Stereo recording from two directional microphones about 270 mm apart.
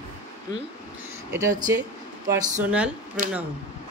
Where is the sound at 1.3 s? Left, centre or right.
Centre.